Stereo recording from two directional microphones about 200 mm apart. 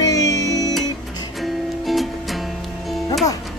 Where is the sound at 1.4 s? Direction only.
Centre (ahead or behind).